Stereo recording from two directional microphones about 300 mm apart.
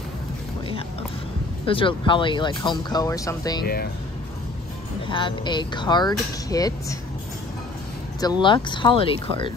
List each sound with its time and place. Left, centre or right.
1.7 s speech: centre
5.0 s speech: centre
8.2 s speech: centre